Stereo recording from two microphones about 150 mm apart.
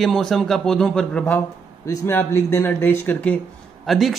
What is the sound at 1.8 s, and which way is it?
Speech, 20° left (ahead or behind).